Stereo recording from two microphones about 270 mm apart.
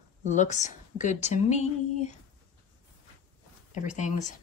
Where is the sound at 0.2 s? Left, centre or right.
Left.